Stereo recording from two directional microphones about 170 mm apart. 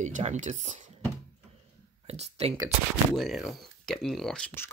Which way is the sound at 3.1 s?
Centre (ahead or behind).